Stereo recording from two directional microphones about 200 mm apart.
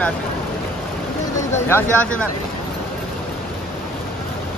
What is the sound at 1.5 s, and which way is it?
Speech, 10° left (ahead or behind).